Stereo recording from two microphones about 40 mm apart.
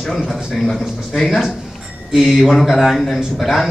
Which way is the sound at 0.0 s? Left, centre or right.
Centre.